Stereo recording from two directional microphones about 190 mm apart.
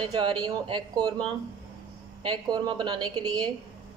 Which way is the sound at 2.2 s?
25° right (ahead or behind).